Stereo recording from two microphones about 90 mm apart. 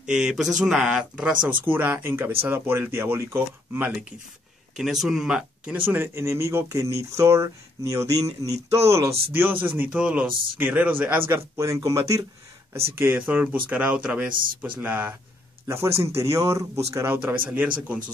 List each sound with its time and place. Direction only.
0.0 s speech: 5° right (ahead or behind)
1.4 s a man's voice: 20° right (ahead or behind)
4.7 s speech: 5° right (ahead or behind)
5.9 s a man's voice: 30° right (ahead or behind)
12.7 s a man's voice: 30° right (ahead or behind)
15.6 s speech: 30° right (ahead or behind)
17.3 s speech: 15° right (ahead or behind)